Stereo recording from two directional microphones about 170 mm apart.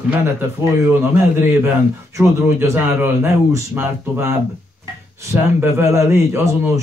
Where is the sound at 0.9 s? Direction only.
10° right (ahead or behind).